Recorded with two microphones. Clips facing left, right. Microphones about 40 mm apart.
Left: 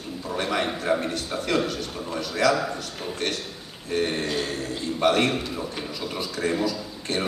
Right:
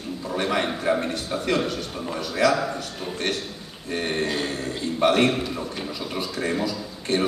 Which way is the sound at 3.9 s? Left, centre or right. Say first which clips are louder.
Even; centre.